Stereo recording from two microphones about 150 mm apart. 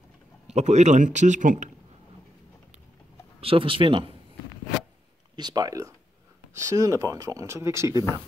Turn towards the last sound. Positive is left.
turn(degrees=-20)  # may be behind; listen again after turning